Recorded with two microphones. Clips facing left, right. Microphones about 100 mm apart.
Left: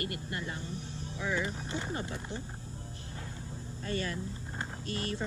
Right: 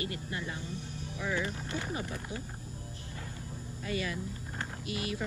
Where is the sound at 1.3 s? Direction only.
20° left (ahead or behind).